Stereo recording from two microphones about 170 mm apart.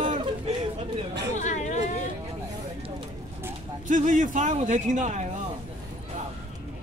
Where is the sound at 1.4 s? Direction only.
45° left (ahead or behind).